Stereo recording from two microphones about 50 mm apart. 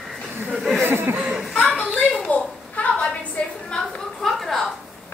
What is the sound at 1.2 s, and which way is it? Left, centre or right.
Chuckle, centre.